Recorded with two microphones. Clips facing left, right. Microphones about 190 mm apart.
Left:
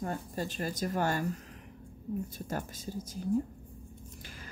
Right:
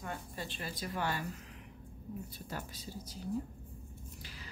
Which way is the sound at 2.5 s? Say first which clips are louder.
Left 4 dB; 45° left (ahead or behind).